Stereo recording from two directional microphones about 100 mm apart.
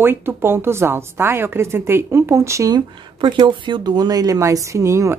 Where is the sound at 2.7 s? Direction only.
50° right (ahead or behind); by 5.1 s 30° right (ahead or behind).